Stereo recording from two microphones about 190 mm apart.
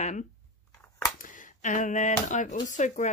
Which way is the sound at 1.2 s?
40° left (ahead or behind).